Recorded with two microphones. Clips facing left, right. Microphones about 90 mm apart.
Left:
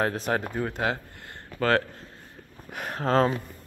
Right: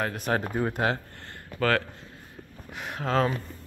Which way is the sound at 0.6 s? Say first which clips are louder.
Right 2 dB; 10° right (ahead or behind).